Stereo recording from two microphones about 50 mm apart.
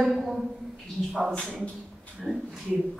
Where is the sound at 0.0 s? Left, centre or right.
Centre.